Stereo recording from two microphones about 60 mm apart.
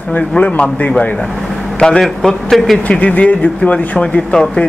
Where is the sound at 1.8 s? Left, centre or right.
Centre.